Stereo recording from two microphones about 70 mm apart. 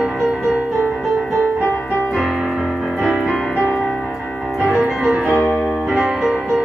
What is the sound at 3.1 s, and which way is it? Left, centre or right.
Music, centre.